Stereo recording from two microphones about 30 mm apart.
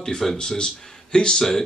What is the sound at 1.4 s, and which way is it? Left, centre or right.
Speech, centre.